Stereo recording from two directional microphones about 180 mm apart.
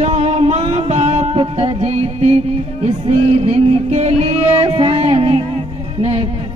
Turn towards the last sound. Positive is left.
turn(degrees=-35)  # may be behind; listen again after turning